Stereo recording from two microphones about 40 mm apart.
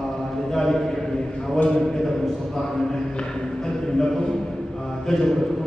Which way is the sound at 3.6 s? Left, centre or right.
Centre.